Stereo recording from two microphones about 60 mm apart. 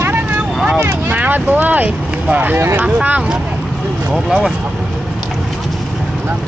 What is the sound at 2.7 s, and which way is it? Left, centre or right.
Speech, right.